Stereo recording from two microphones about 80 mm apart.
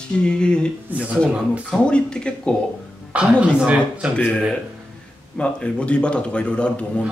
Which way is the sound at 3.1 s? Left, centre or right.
Centre.